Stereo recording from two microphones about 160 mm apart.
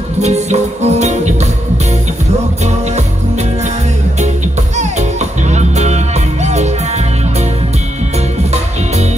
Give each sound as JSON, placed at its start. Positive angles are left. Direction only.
{"t": 0.2, "sound": "music", "side_deg": -45}
{"t": 4.7, "sound": "music", "side_deg": -45}